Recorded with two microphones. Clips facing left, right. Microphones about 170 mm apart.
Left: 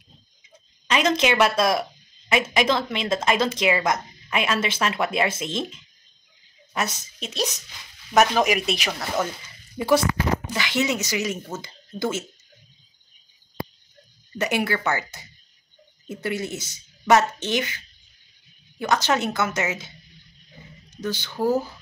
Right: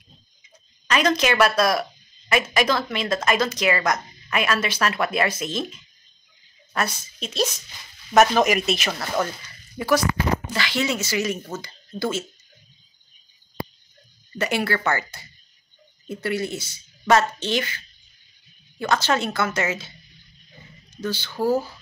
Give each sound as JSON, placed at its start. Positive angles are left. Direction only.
{"t": 0.8, "sound": "a woman's voice", "side_deg": 25}
{"t": 10.6, "sound": "a woman's voice", "side_deg": 20}
{"t": 14.4, "sound": "a woman's voice", "side_deg": 15}
{"t": 18.8, "sound": "a woman's voice", "side_deg": 15}
{"t": 20.9, "sound": "a woman's voice", "side_deg": 15}